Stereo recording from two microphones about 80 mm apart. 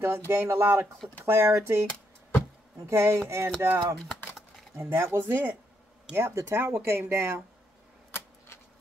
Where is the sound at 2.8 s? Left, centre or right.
Right.